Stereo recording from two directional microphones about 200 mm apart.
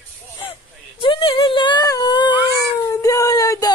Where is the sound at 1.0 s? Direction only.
25° left (ahead or behind).